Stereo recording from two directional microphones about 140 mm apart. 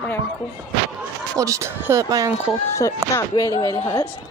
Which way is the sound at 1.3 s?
25° right (ahead or behind).